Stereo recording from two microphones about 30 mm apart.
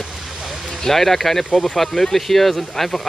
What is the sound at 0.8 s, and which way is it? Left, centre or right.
Speech, centre.